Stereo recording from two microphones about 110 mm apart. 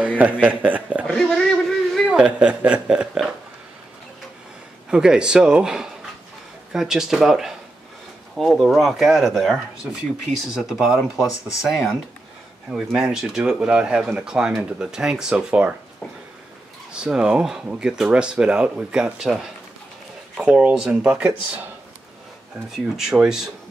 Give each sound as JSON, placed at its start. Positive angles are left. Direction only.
{"t": 0.2, "sound": "speech", "side_deg": -15}
{"t": 1.0, "sound": "a man's voice", "side_deg": 5}
{"t": 4.9, "sound": "speech", "side_deg": -5}
{"t": 16.9, "sound": "speech", "side_deg": -5}
{"t": 22.7, "sound": "speech", "side_deg": -5}